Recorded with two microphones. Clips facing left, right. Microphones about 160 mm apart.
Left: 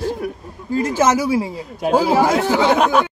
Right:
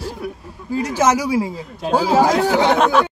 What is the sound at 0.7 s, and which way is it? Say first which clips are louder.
Speech: left 1 dB; 10° right (ahead or behind).